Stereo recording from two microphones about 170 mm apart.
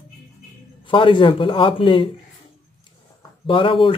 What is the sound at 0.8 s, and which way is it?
Speech, 30° left (ahead or behind).